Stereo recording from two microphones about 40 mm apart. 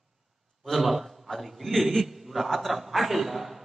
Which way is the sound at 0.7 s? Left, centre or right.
Centre.